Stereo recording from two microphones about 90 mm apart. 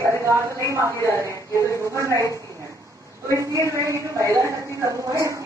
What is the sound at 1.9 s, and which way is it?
Speech, 35° right (ahead or behind).